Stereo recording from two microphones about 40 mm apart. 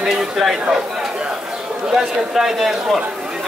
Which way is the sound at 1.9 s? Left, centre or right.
Centre.